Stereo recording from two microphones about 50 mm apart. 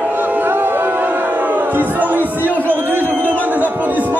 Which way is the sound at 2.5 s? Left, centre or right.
Right.